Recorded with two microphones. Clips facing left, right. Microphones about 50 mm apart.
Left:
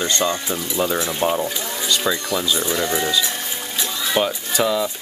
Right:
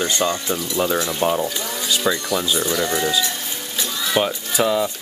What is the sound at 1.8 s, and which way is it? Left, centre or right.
Speech, centre.